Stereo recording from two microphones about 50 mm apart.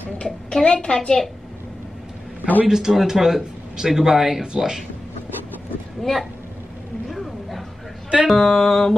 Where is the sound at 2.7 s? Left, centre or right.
Centre.